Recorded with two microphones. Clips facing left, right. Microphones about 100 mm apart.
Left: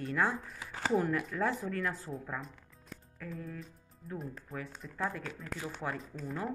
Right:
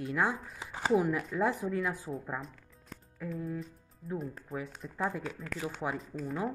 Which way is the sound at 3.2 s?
15° right (ahead or behind).